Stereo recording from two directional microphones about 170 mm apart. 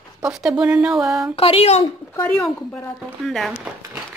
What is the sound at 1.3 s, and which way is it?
Speech, 35° left (ahead or behind).